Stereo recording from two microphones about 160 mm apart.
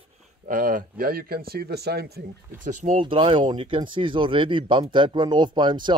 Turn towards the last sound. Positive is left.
turn(degrees=-30)  # may be behind; listen again after turning